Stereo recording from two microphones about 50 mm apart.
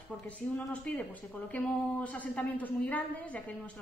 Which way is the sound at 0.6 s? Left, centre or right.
Left.